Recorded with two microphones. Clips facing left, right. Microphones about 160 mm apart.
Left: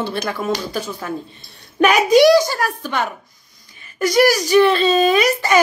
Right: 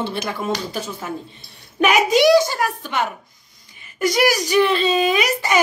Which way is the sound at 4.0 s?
20° right (ahead or behind).